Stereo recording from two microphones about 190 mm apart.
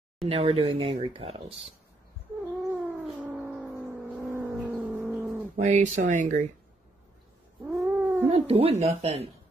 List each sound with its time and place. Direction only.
0.3 s speech: 30° right (ahead or behind)
2.7 s cat: 10° right (ahead or behind)
5.6 s speech: 40° right (ahead or behind)
7.6 s cat: 10° right (ahead or behind)
8.3 s speech: 30° right (ahead or behind)